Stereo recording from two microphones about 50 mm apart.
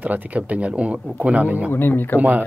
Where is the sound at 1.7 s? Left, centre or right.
Left.